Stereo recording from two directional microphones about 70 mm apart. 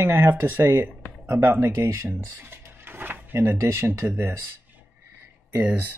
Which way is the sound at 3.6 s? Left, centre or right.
Right.